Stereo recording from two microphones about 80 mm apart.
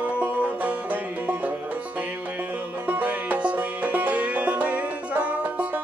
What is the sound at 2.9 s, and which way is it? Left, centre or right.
Music, right.